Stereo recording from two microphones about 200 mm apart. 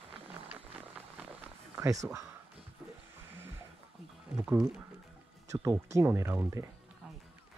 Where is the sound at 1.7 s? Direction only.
15° right (ahead or behind).